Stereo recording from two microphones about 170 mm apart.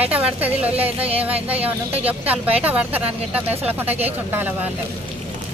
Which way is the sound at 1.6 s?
35° right (ahead or behind).